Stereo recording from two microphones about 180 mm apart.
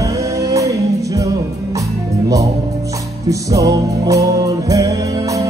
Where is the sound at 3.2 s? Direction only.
20° right (ahead or behind).